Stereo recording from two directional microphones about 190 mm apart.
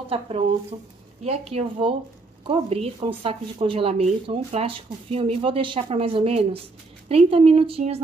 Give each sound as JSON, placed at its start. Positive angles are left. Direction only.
{"t": 0.1, "sound": "a woman's voice", "side_deg": -30}